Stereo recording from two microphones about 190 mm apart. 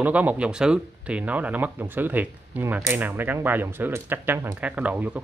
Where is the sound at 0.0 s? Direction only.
10° right (ahead or behind).